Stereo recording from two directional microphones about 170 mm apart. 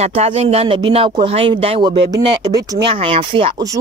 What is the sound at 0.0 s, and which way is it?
Speech, 40° right (ahead or behind).